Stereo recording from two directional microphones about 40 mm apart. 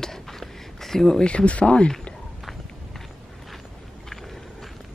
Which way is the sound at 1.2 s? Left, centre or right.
Left.